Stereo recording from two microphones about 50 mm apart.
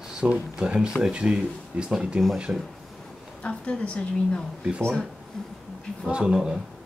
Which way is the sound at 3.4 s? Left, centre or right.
Left.